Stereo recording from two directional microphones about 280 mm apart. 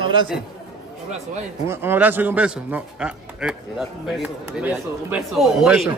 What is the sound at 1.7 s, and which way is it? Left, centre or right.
A man's voice, centre.